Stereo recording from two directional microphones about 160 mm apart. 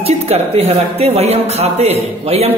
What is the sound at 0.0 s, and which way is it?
Speech, 40° right (ahead or behind).